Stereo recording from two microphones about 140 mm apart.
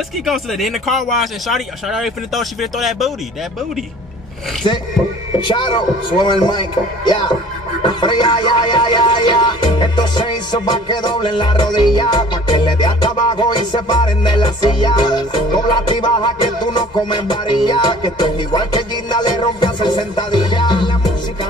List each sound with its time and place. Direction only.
0.2 s speech: centre (ahead or behind)
4.6 s music: 35° left (ahead or behind)